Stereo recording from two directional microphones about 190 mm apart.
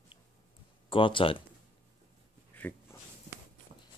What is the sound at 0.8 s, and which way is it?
Speech, 25° left (ahead or behind).